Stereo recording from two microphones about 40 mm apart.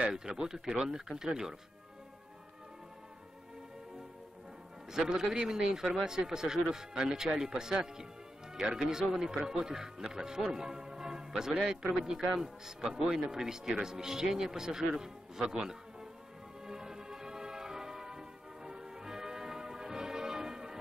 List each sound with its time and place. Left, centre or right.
0.1 s speech: centre
4.9 s speech: centre
5.9 s speech: right
8.5 s speech: right
8.8 s speech: centre
15.5 s music: centre